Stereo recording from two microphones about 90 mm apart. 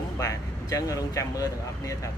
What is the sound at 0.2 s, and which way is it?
Speech, 40° left (ahead or behind).